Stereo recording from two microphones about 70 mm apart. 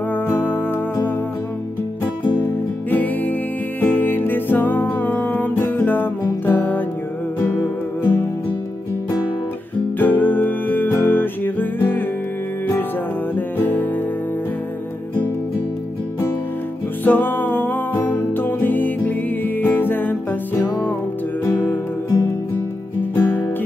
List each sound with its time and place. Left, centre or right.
0.1 s music: left
2.9 s music: left
9.9 s music: left
13.6 s music: left
17.0 s music: left
23.1 s music: left